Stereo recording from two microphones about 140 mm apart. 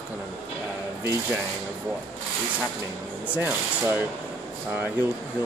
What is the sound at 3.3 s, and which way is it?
Speech, 10° right (ahead or behind).